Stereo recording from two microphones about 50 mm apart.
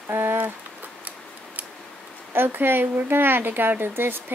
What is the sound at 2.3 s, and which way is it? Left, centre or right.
A child's voice, right.